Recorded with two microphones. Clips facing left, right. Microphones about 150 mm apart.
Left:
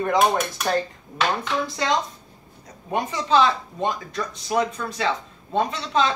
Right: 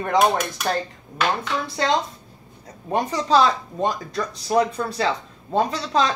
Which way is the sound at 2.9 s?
35° right (ahead or behind).